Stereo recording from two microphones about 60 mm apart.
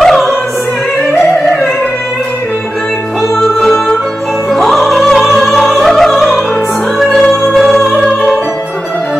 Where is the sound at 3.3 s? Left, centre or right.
Centre.